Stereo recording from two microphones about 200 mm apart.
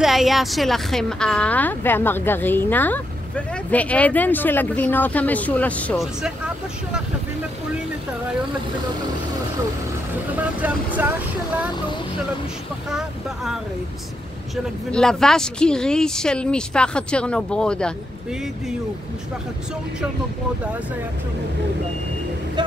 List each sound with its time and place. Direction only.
0.0 s a woman's voice: centre (ahead or behind)
10.3 s speech: 10° right (ahead or behind)
12.9 s speech: centre (ahead or behind)
22.6 s speech: 25° right (ahead or behind)